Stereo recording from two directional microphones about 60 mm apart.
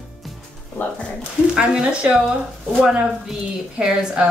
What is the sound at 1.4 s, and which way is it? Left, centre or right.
A woman's voice, centre.